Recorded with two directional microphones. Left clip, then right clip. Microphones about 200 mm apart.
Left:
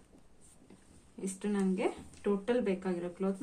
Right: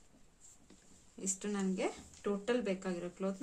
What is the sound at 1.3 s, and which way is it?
Speech, 20° right (ahead or behind).